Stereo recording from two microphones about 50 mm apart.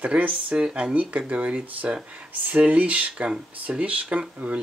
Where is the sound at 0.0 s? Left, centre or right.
Right.